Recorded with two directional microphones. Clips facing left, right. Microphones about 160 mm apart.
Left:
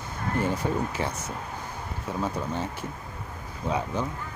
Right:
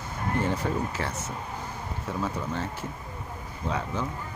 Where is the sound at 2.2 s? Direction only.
15° left (ahead or behind).